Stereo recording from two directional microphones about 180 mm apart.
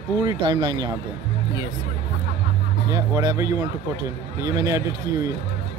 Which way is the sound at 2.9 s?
20° right (ahead or behind).